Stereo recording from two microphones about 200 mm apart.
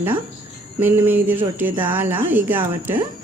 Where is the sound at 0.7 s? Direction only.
10° right (ahead or behind).